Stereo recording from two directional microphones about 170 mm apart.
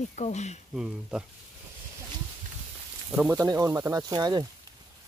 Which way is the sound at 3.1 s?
15° right (ahead or behind).